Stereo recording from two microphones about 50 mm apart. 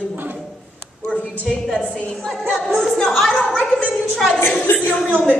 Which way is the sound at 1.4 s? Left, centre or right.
Centre.